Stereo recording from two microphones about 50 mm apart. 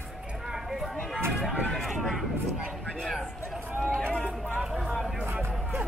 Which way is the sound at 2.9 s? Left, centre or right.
Centre.